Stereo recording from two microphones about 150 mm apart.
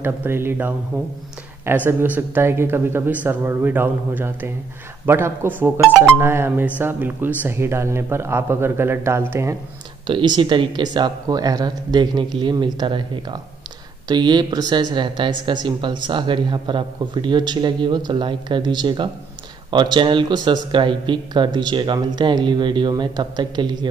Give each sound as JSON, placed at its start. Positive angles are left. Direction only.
{"t": 0.0, "sound": "speech", "side_deg": -15}
{"t": 1.9, "sound": "speech", "side_deg": -15}
{"t": 10.0, "sound": "speech", "side_deg": -30}